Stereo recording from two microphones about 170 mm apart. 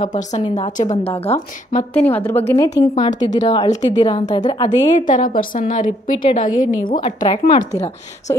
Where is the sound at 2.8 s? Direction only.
25° left (ahead or behind).